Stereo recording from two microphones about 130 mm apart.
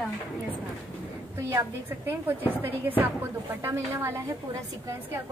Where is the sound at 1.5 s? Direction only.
20° right (ahead or behind).